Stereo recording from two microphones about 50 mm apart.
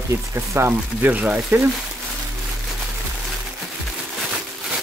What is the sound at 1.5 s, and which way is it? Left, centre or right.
Speech, right.